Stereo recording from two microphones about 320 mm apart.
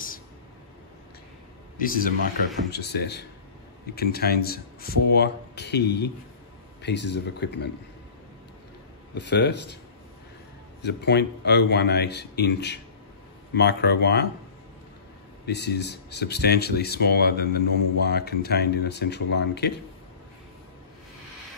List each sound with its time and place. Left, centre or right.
1.8 s speech: left
9.1 s speech: left
10.8 s speech: left
15.4 s speech: left